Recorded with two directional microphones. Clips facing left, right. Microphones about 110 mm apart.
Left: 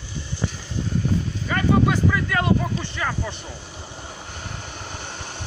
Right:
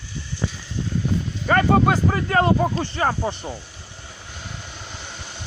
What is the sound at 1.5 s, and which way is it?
Speech, 50° right (ahead or behind).